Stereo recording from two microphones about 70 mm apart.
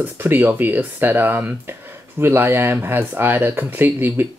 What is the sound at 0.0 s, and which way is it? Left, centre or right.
Speech, right.